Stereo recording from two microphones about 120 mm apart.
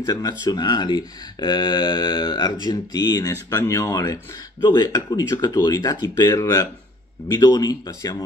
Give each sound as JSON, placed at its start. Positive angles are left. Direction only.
{"t": 0.0, "sound": "speech", "side_deg": 30}